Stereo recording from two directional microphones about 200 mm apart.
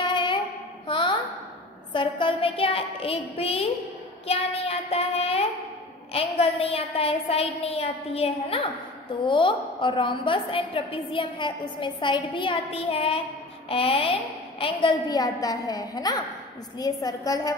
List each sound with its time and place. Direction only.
0.0 s child singing: 25° left (ahead or behind)
0.8 s a sound: 25° left (ahead or behind)
1.9 s a woman's voice: 25° left (ahead or behind)
4.3 s child singing: 30° left (ahead or behind)
6.1 s a woman's voice: 30° left (ahead or behind)